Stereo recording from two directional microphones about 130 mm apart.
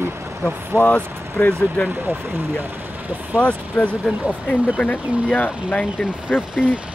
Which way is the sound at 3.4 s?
10° left (ahead or behind).